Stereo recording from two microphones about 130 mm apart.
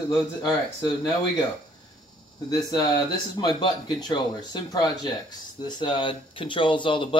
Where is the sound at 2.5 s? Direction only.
30° left (ahead or behind).